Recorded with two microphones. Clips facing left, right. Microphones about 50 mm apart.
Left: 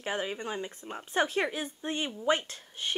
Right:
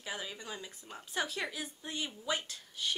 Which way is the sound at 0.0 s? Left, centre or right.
Left.